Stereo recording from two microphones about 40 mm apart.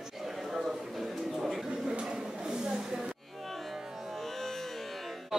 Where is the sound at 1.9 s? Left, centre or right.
Centre.